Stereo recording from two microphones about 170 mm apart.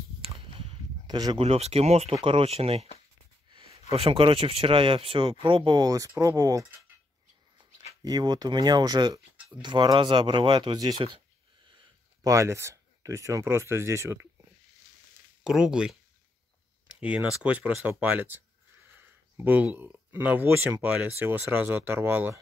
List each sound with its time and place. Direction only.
0.2 s a sound: 35° right (ahead or behind)
1.4 s speech: 35° right (ahead or behind)
3.9 s speech: 35° right (ahead or behind)
8.0 s speech: 25° right (ahead or behind)
15.4 s speech: 5° right (ahead or behind)